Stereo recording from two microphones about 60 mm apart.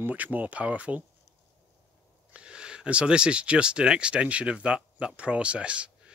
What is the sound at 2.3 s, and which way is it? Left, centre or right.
Speech, centre.